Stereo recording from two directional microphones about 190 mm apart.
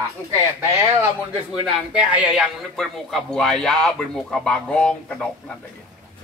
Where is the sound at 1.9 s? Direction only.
5° right (ahead or behind).